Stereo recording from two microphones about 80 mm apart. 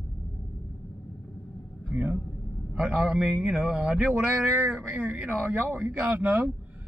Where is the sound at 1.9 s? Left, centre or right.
Centre.